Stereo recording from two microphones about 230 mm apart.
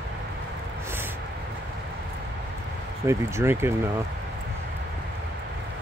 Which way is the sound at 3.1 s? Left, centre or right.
Centre.